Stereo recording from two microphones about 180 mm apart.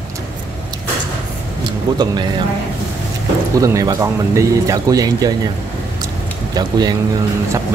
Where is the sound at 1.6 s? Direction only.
25° right (ahead or behind).